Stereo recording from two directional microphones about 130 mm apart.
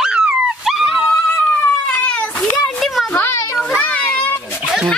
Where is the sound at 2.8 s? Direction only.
Centre (ahead or behind).